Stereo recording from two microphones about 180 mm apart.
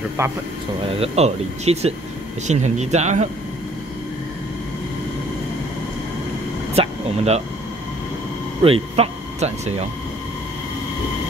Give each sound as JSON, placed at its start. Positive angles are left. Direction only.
{"t": 0.2, "sound": "speech", "side_deg": -15}
{"t": 0.8, "sound": "speech", "side_deg": -35}
{"t": 6.7, "sound": "vehicle", "side_deg": -35}
{"t": 8.6, "sound": "speech", "side_deg": -30}